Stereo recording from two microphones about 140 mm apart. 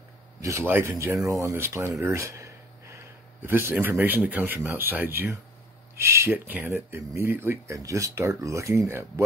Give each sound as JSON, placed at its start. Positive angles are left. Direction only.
{"t": 0.4, "sound": "speech", "side_deg": -20}